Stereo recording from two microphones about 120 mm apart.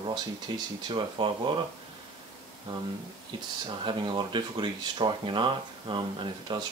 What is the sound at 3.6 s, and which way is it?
Speech, 40° right (ahead or behind).